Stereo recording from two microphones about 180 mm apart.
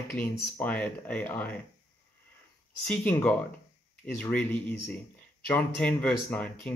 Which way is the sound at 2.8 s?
5° left (ahead or behind).